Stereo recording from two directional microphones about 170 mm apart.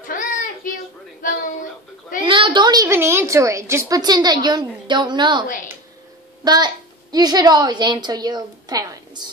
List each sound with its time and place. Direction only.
0.0 s child singing: 50° left (ahead or behind)
1.2 s a sound: 50° left (ahead or behind)
2.2 s a woman's voice: 30° right (ahead or behind)
6.4 s a woman's voice: 25° right (ahead or behind)